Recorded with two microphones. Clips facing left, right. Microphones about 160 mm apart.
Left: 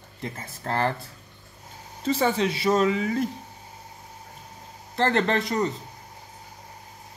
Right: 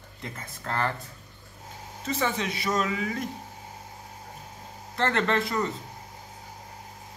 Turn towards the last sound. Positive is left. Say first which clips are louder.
# left 2 dB
turn(degrees=30)  # may be behind; listen again after turning